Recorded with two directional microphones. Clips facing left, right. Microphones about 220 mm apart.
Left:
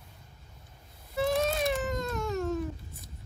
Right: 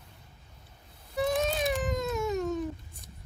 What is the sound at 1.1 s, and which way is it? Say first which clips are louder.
Baby cry: even; centre (ahead or behind).